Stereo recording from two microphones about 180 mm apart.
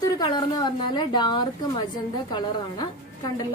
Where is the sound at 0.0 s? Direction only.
25° left (ahead or behind).